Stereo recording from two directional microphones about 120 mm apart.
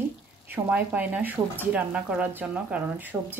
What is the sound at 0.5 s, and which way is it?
Speech, 15° right (ahead or behind).